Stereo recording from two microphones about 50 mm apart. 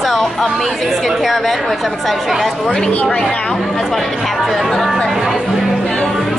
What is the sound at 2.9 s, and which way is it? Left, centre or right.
Speech, left.